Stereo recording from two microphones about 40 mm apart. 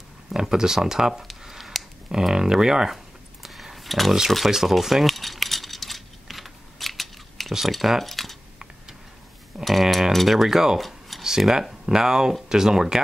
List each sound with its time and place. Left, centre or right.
0.3 s speech: centre
1.4 s a sound: centre
2.0 s speech: centre
3.4 s pig: centre
4.5 s a sound: centre
7.5 s speech: centre
9.7 s speech: centre
10.8 s a sound: centre
11.2 s speech: centre